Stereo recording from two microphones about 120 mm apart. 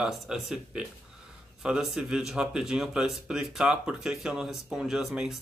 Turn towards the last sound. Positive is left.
turn(degrees=-5)  # may be behind; listen again after turning